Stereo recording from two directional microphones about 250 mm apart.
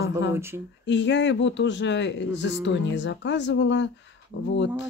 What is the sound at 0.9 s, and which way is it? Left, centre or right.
Speech, left.